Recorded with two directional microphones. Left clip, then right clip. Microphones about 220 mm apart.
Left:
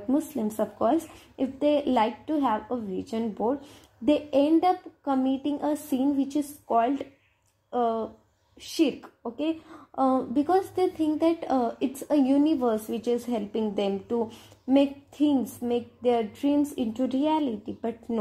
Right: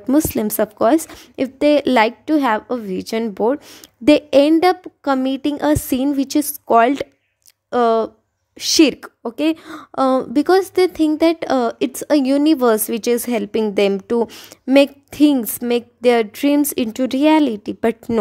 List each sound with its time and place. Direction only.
0.1 s a woman's voice: 50° right (ahead or behind)